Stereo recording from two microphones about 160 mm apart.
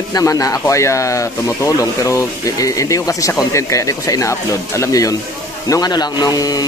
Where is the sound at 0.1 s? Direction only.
20° left (ahead or behind).